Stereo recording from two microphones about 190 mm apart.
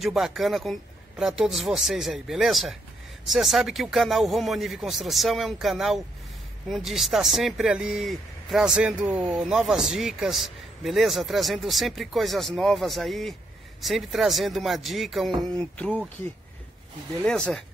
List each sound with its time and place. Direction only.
0.0 s speech: centre (ahead or behind)
17.2 s speech: 5° left (ahead or behind)